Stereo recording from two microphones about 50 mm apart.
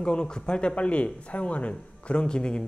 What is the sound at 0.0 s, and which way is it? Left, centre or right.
A man's voice, centre.